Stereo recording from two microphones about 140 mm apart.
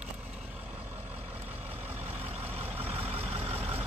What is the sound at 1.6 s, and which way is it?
Vehicle, 50° right (ahead or behind).